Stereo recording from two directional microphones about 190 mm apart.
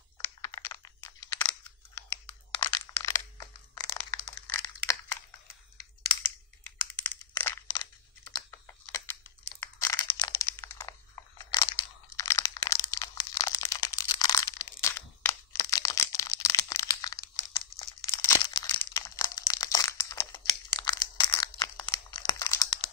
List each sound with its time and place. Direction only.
0.2 s crunch: 15° left (ahead or behind)
2.5 s crumpling: 20° left (ahead or behind)
4.1 s a sound: 15° left (ahead or behind)
6.0 s computer keyboard: 10° left (ahead or behind)
9.8 s a sound: 10° left (ahead or behind)
18.8 s crumpling: 10° left (ahead or behind)